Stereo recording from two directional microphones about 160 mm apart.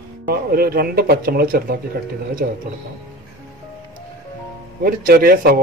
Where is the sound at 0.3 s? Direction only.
70° right (ahead or behind).